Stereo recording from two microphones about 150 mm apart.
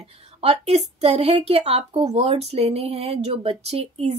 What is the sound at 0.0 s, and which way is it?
Speech, 45° right (ahead or behind).